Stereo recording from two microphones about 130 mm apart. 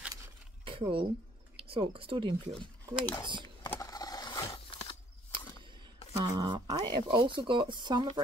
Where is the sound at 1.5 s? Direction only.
45° right (ahead or behind).